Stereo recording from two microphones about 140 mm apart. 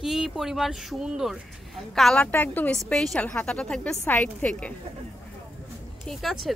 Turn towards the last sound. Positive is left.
turn(degrees=0)  # may be behind; listen again after turning